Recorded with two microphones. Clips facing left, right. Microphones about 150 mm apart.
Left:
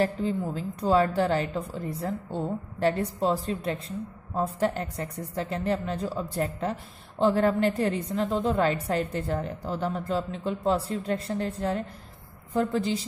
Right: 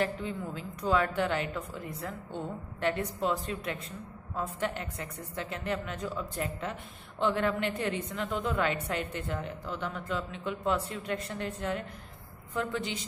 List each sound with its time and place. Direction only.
0.0 s a woman's voice: 35° left (ahead or behind)